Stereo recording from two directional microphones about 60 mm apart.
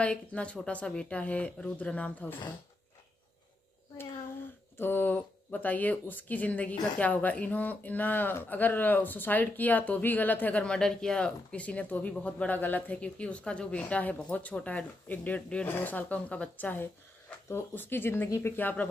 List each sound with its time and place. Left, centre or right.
0.0 s speech: left
4.7 s speech: left
10.6 s a woman's voice: centre; by 18.9 s left